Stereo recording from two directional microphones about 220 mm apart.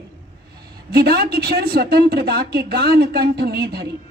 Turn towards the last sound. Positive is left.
turn(degrees=-45)  # may be behind; listen again after turning